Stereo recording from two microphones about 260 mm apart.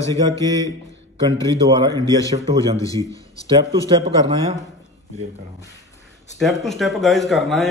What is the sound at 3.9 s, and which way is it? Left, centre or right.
Speech, centre.